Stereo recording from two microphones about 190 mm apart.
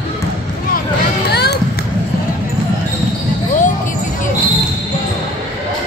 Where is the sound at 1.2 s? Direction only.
60° left (ahead or behind).